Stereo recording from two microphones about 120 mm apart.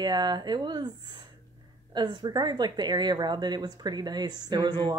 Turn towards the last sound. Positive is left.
turn(degrees=-35)  # may be behind; listen again after turning